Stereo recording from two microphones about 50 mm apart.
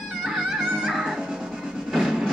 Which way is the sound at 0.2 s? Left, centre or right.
Centre.